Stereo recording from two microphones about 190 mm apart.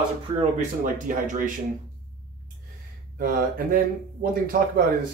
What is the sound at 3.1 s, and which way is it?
Speech, 45° right (ahead or behind).